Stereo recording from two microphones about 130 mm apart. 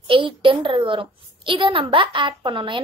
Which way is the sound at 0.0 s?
40° right (ahead or behind).